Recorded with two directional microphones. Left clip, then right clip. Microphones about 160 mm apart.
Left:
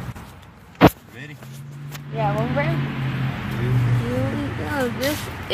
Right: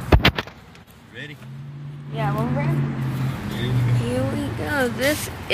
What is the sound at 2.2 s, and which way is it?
Speech, 10° left (ahead or behind).